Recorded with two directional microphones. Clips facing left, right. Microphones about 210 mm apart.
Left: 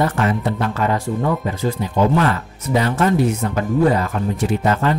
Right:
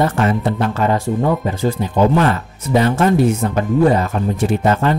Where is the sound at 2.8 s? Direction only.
30° right (ahead or behind).